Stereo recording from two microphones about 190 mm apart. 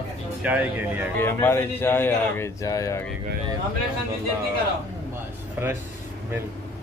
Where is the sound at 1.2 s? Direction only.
10° left (ahead or behind).